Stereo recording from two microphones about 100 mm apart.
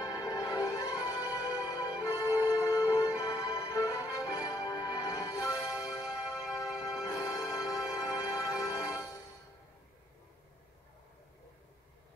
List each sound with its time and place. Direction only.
0.0 s music: 40° left (ahead or behind)